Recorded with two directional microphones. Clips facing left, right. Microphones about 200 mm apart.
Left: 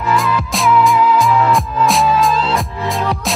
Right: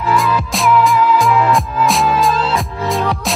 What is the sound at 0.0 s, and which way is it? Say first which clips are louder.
Music: right 1 dB; centre (ahead or behind).